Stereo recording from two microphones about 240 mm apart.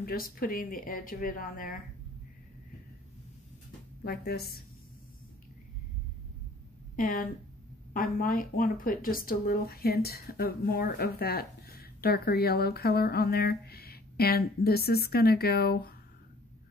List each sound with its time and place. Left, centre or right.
0.0 s speech: left
4.0 s speech: left
7.0 s speech: left